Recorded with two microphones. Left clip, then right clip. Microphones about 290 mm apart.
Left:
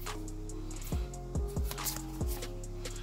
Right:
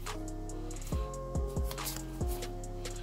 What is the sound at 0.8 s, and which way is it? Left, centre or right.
Music, centre.